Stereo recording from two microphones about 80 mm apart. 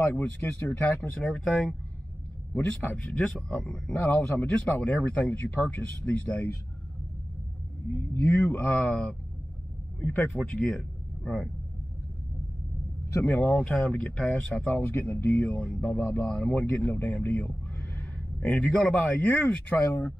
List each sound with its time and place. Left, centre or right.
0.1 s speech: centre
1.1 s a man's voice: centre
2.5 s a man's voice: left
7.9 s a man's voice: left; by 11.5 s centre
13.2 s a man's voice: centre
18.6 s a man's voice: centre
19.9 s speech: left